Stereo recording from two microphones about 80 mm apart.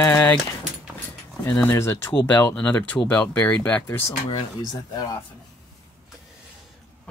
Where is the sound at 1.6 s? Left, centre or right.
Left.